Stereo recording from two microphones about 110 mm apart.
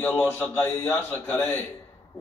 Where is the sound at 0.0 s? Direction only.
15° left (ahead or behind).